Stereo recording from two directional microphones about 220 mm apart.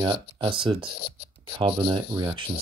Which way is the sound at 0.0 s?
20° right (ahead or behind).